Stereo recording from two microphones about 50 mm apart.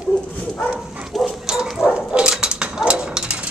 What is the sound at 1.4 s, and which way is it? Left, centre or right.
Bow-wow, centre.